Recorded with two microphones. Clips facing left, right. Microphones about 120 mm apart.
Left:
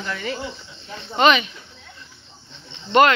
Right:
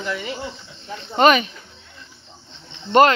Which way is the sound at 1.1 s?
45° right (ahead or behind).